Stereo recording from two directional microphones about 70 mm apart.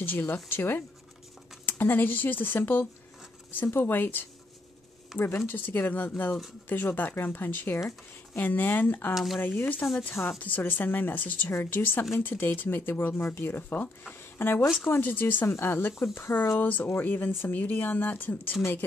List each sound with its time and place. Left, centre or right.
0.0 s speech: left
5.1 s speech: centre
5.5 s speech: left
9.1 s speech: centre
9.4 s speech: left